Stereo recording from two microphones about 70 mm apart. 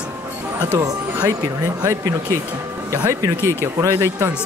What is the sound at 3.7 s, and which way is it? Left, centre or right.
Speech, right.